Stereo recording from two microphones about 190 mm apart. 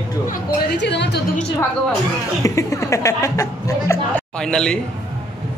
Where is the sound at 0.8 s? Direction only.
65° left (ahead or behind).